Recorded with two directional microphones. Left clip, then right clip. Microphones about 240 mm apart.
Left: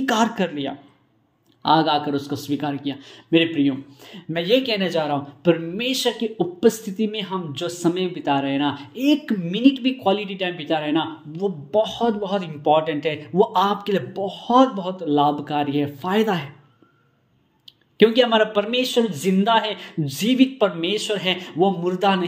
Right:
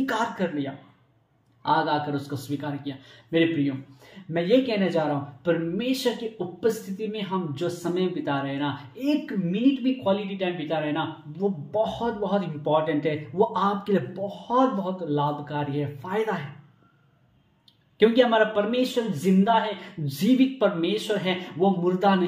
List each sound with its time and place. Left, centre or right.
0.0 s a woman's voice: left
17.9 s a woman's voice: left